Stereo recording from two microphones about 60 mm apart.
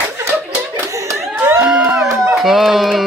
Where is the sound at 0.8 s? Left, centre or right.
Right.